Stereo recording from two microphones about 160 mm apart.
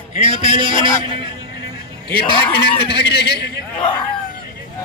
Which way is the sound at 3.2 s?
90° left.